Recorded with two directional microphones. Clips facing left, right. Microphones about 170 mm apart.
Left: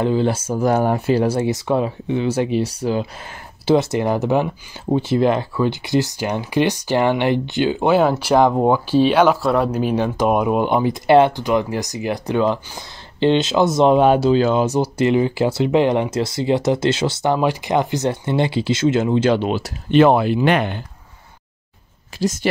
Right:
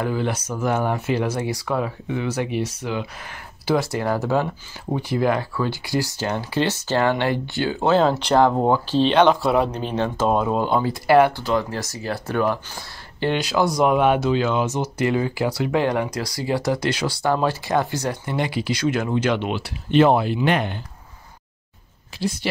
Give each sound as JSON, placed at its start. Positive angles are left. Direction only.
{"t": 0.0, "sound": "speech", "side_deg": 25}
{"t": 3.6, "sound": "speech", "side_deg": 20}
{"t": 19.9, "sound": "speech", "side_deg": 65}
{"t": 22.2, "sound": "speech", "side_deg": 45}